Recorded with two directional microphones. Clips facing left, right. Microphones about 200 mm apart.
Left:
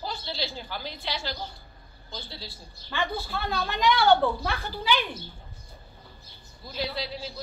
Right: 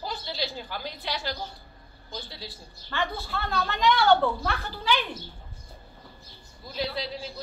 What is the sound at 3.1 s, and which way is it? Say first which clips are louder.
A woman's voice: even; 5° left (ahead or behind).